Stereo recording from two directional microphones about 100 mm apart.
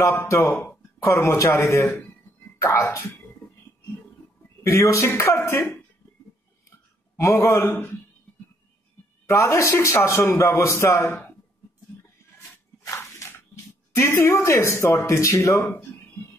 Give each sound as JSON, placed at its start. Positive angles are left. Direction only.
{"t": 0.0, "sound": "a man's voice", "side_deg": 25}
{"t": 1.9, "sound": "speech", "side_deg": 20}
{"t": 2.6, "sound": "a man's voice", "side_deg": 30}
{"t": 4.6, "sound": "a man's voice", "side_deg": 30}
{"t": 7.2, "sound": "a man's voice", "side_deg": 30}
{"t": 9.2, "sound": "a man's voice", "side_deg": 30}
{"t": 12.8, "sound": "squish", "side_deg": 30}
{"t": 13.9, "sound": "a man's voice", "side_deg": 30}